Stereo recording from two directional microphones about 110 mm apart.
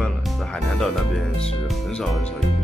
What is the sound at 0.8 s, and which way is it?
Speech, 5° left (ahead or behind).